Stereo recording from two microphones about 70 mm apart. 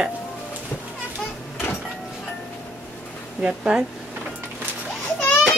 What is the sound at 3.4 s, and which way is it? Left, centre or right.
Speech, centre.